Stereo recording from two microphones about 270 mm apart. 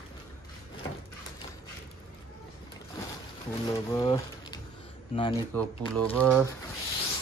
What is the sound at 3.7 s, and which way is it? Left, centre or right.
Speech, centre.